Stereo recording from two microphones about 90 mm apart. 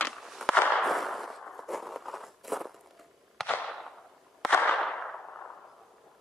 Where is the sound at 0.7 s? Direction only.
Centre (ahead or behind).